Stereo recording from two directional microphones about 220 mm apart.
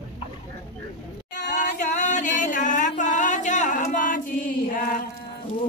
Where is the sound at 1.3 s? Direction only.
50° left (ahead or behind).